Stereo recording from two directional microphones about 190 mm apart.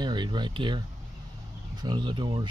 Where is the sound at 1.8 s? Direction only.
25° right (ahead or behind).